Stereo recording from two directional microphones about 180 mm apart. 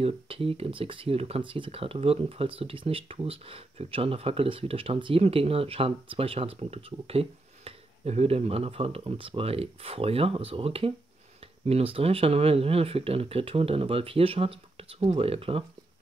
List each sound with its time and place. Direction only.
0.0 s speech: 30° right (ahead or behind)